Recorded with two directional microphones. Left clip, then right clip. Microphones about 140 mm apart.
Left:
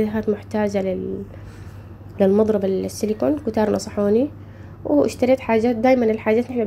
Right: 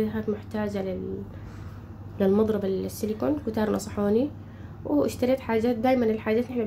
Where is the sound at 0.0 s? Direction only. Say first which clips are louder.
Left 7 dB; 45° left (ahead or behind).